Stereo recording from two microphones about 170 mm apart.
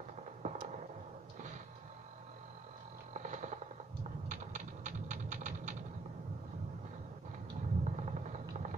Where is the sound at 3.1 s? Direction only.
45° right (ahead or behind).